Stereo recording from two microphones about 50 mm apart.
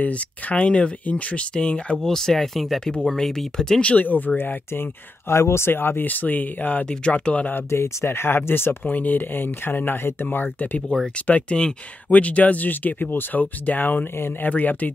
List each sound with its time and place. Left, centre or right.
0.0 s speech: left
2.0 s speech: centre
3.8 s speech: left
4.4 s speech: left
5.3 s speech: left
7.5 s speech: left
8.9 s speech: left